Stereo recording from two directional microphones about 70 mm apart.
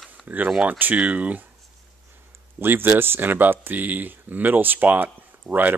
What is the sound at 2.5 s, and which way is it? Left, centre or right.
A man's voice, right.